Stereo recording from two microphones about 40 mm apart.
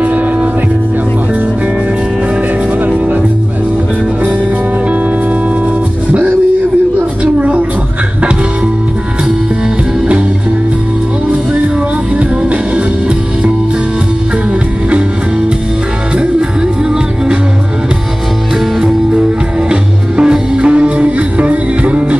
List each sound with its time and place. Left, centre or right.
7.3 s a sound: right
12.2 s music: right
19.7 s music: right